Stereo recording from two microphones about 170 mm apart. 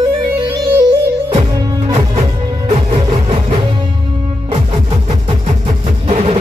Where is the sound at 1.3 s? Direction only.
35° right (ahead or behind).